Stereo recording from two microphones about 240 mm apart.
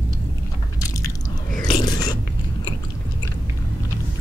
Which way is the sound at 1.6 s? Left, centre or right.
Centre.